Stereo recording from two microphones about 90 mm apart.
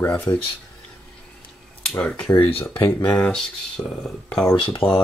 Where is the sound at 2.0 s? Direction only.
10° left (ahead or behind).